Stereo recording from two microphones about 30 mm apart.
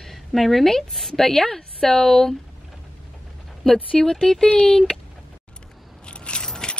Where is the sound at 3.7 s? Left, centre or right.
Left.